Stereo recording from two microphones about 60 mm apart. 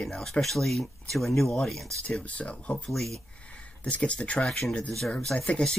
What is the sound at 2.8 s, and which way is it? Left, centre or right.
Speech, centre.